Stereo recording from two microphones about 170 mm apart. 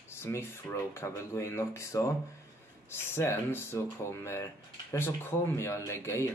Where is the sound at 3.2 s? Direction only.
15° left (ahead or behind).